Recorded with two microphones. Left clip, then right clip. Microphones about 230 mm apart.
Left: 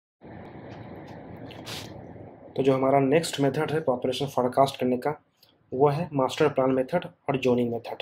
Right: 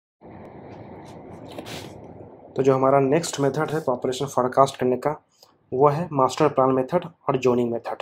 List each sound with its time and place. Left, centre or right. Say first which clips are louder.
2.5 s speech: right 4 dB; centre